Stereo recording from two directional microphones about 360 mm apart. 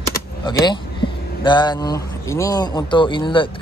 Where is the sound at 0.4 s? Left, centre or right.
Centre.